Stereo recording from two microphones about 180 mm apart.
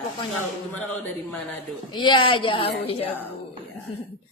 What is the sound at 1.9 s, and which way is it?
A woman's voice, 25° left (ahead or behind).